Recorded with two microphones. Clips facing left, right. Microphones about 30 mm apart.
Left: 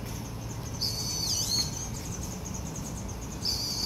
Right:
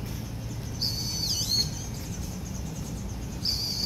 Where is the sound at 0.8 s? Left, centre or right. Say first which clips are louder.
Right 2 dB; centre.